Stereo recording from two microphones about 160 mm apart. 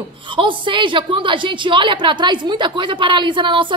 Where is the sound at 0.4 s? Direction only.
30° right (ahead or behind).